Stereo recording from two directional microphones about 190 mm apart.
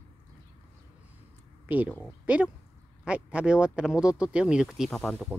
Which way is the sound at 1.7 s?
10° right (ahead or behind).